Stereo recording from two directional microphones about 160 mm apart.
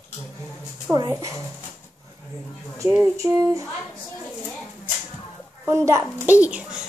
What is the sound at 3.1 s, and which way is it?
Speech, 20° right (ahead or behind).